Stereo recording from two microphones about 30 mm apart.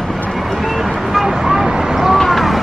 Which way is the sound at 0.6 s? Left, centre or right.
Centre.